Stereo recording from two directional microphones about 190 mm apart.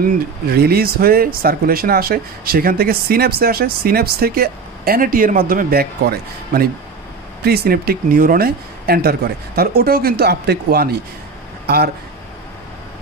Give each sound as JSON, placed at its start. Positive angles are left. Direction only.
{"t": 0.5, "sound": "speech", "side_deg": -55}